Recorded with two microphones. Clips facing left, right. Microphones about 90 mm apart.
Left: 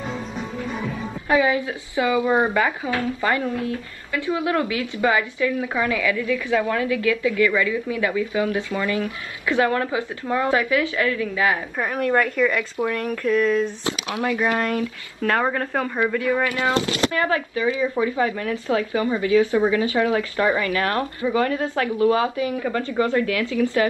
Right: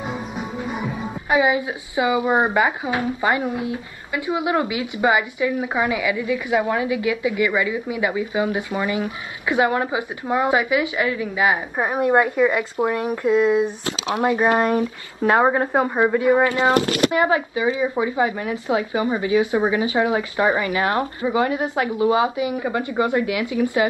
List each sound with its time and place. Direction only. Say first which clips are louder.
0.4 s speech: right 1 dB; 15° right (ahead or behind)